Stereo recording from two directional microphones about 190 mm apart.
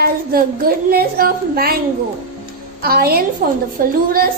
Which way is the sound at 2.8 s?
55° right (ahead or behind).